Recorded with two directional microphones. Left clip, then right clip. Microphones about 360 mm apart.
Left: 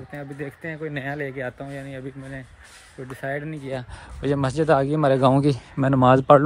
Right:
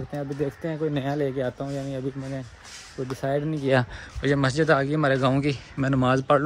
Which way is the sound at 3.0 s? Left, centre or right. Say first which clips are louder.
Right 3 dB; centre.